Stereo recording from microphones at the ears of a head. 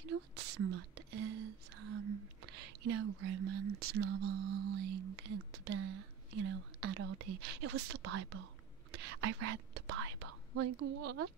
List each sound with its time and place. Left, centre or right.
0.0 s whispering: right
8.9 s speech: right